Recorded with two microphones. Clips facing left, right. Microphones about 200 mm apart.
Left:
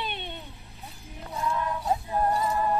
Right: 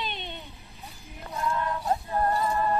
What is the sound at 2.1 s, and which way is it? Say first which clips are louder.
Music: even; 15° left (ahead or behind).